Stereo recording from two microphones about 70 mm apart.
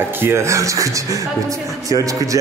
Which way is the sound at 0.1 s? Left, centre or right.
Right.